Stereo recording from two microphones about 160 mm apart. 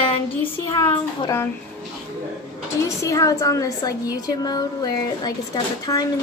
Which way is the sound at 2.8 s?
20° left (ahead or behind).